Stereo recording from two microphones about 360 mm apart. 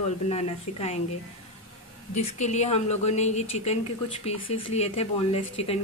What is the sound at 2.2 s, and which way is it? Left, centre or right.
A woman's voice, centre.